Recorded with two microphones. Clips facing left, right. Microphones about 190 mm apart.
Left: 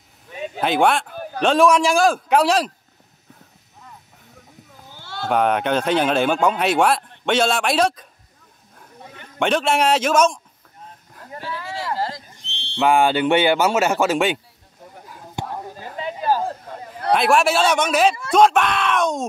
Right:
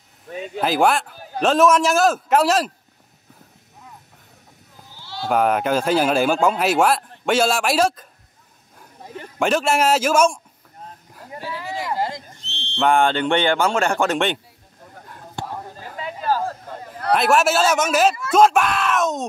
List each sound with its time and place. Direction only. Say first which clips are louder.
0.6 s speech: even; 5° right (ahead or behind)
4.9 s sheep: left 1 dB; 55° left (ahead or behind)
5.2 s speech: even; 5° right (ahead or behind)
9.4 s speech: even; 5° right (ahead or behind)
11.3 s a sound: right 1 dB; 15° right (ahead or behind)
12.4 s speech: left 1 dB; 10° left (ahead or behind)
16.0 s a sound: left 1 dB; 20° left (ahead or behind)
17.1 s speech: even; centre (ahead or behind)